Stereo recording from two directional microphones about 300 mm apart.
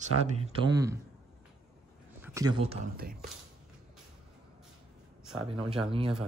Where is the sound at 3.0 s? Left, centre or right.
Right.